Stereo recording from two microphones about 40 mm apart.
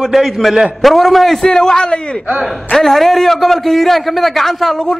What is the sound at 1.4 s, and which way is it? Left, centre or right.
Speech, centre.